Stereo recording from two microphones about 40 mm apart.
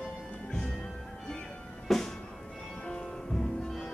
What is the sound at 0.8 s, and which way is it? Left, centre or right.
Music, centre.